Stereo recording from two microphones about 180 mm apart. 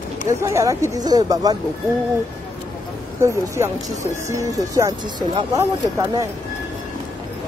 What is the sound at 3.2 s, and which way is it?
Speech, 15° right (ahead or behind).